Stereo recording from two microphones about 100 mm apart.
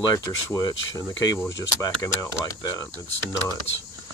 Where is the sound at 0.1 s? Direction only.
35° left (ahead or behind).